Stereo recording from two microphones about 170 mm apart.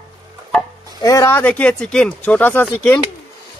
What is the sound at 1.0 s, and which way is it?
A man's voice, 15° left (ahead or behind).